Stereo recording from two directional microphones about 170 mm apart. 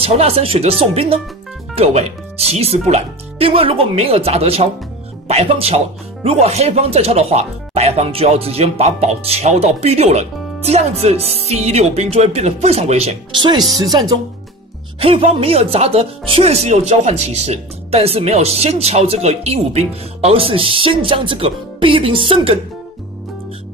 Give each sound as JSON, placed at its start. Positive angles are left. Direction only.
{"t": 0.0, "sound": "speech", "side_deg": -35}